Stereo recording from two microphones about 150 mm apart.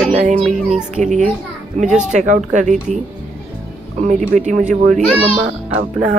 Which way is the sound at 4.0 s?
55° right (ahead or behind).